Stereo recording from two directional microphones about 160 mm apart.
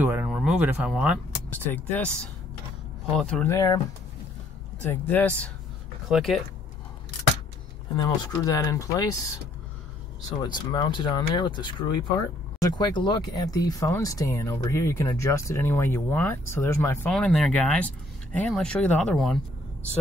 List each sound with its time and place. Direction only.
0.0 s speech: 10° right (ahead or behind)
1.7 s speech: 10° left (ahead or behind)
3.5 s speech: 25° left (ahead or behind)
5.0 s speech: 10° left (ahead or behind)
7.9 s speech: 25° left (ahead or behind)
10.4 s speech: 25° left (ahead or behind)
17.1 s speech: 5° left (ahead or behind)